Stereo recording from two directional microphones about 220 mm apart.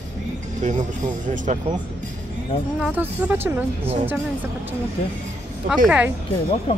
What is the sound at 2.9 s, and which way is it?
Speech, 10° right (ahead or behind).